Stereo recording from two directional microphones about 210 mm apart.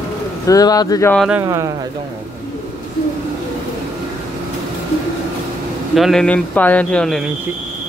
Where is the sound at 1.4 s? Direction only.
15° right (ahead or behind).